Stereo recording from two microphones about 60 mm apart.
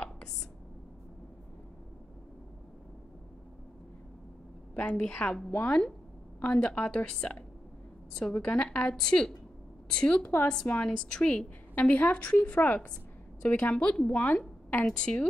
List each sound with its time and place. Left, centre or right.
4.7 s a woman's voice: centre
11.7 s a woman's voice: left